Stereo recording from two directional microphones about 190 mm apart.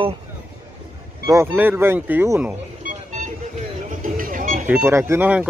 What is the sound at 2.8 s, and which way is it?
Vehicle, 40° right (ahead or behind).